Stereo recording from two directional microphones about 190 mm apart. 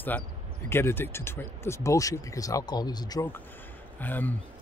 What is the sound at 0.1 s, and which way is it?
Speech, 10° left (ahead or behind).